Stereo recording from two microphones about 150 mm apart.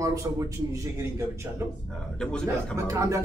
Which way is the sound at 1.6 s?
15° right (ahead or behind).